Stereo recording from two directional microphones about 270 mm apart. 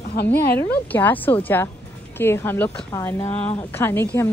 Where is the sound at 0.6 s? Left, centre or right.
Centre.